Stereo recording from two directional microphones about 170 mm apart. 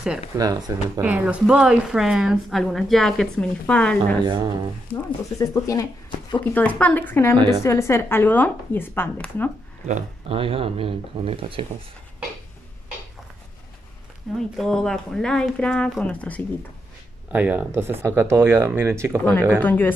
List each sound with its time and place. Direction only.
0.4 s speech: 20° right (ahead or behind)
1.0 s a woman's voice: 5° right (ahead or behind)
4.2 s speech: 25° right (ahead or behind)
4.9 s speech: 20° left (ahead or behind)
6.4 s speech: 10° left (ahead or behind)
7.3 s speech: 25° right (ahead or behind)
7.6 s speech: 15° left (ahead or behind)
9.8 s speech: 40° right (ahead or behind)
14.3 s a woman's voice: 5° left (ahead or behind)
17.3 s speech: 10° right (ahead or behind)
19.6 s speech: 10° left (ahead or behind)